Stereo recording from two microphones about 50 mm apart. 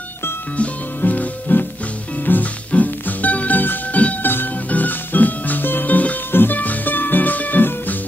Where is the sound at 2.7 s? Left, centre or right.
Left.